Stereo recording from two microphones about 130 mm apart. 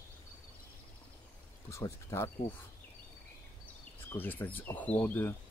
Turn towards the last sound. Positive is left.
turn(degrees=15)  # may be behind; listen again after turning